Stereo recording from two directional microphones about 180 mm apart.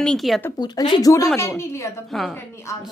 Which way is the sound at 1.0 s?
20° left (ahead or behind).